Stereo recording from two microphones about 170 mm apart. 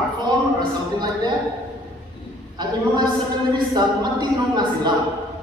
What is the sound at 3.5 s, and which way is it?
A woman's voice, 25° right (ahead or behind).